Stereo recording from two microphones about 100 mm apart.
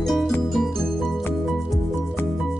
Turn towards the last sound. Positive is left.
turn(degrees=0)  # may be behind; listen again after turning